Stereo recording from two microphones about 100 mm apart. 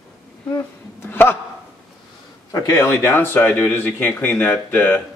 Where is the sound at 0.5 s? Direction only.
20° left (ahead or behind).